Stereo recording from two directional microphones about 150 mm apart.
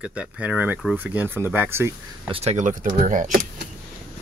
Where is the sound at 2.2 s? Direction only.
40° right (ahead or behind); by 3.3 s 60° right (ahead or behind).